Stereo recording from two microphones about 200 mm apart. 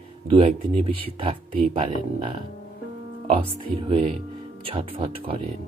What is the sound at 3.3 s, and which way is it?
Speech, 25° right (ahead or behind).